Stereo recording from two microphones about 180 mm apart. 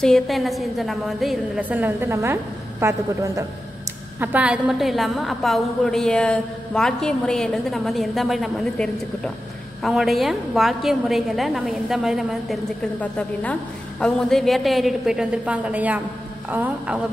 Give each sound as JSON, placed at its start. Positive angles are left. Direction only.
{"t": 0.0, "sound": "a woman's voice", "side_deg": 0}